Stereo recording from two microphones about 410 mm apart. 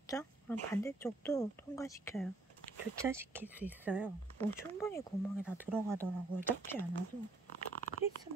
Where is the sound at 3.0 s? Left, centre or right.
Centre.